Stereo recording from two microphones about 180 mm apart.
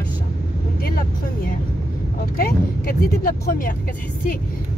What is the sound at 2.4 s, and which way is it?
Speech, 55° left (ahead or behind).